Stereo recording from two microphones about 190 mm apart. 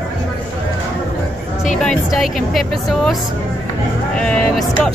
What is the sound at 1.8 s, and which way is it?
Speech, centre (ahead or behind).